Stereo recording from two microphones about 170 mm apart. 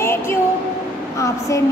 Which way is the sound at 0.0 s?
15° left (ahead or behind).